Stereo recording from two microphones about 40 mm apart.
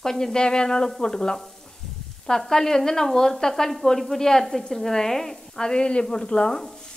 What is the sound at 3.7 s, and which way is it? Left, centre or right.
Sizzle, centre.